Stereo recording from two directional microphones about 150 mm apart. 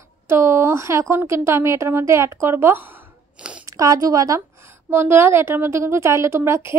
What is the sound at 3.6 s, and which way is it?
A woman's voice, 25° right (ahead or behind).